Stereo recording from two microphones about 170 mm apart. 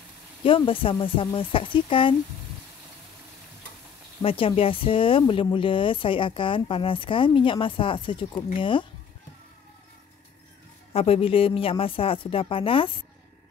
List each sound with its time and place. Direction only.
0.4 s speech: 30° left (ahead or behind)
4.2 s speech: 35° left (ahead or behind)
10.9 s speech: 35° left (ahead or behind)